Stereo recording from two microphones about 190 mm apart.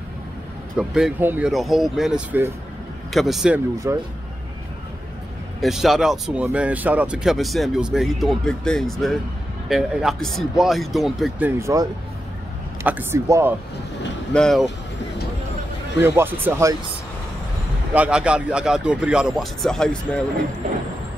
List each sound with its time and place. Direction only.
0.7 s speech: 5° right (ahead or behind)
3.9 s speech: 15° right (ahead or behind)
5.6 s speech: centre (ahead or behind)
14.3 s speech: centre (ahead or behind)
16.0 s speech: 10° right (ahead or behind)
17.9 s speech: 5° right (ahead or behind)